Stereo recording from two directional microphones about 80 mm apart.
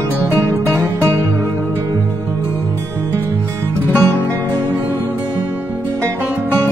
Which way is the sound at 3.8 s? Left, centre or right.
Left.